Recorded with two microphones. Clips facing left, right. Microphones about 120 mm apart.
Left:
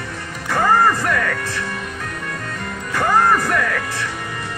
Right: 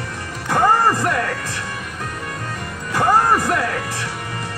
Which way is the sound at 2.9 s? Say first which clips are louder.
Even; 30° right (ahead or behind).